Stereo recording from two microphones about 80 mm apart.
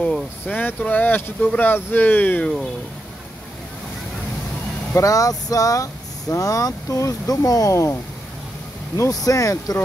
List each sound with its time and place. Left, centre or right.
0.5 s speech: left
4.9 s speech: left